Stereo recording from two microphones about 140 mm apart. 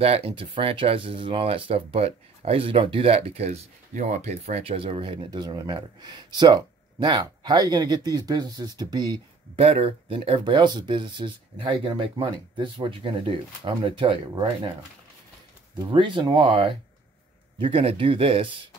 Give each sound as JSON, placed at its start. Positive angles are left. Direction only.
{"t": 0.0, "sound": "speech", "side_deg": -45}
{"t": 9.6, "sound": "speech", "side_deg": -40}
{"t": 15.9, "sound": "speech", "side_deg": -35}